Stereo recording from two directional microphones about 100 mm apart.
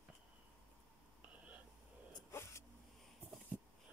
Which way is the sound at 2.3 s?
30° left (ahead or behind).